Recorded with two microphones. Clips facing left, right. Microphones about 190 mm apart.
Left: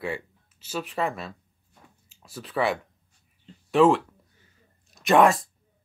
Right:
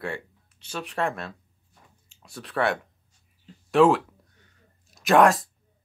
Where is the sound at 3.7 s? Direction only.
Centre (ahead or behind).